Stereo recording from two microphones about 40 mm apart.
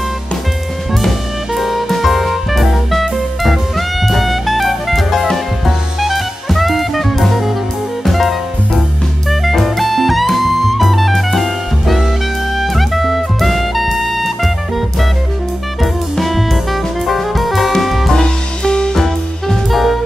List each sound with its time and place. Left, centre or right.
1.5 s music: centre
5.7 s jazz: centre
8.0 s music: centre
9.3 s jazz: centre
10.2 s music: centre
15.8 s music: centre
18.1 s music: centre
18.9 s music: centre